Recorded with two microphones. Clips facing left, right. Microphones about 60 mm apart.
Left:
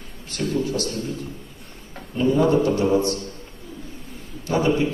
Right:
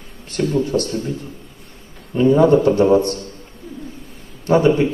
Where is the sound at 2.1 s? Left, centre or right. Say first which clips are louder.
Right 6 dB; right.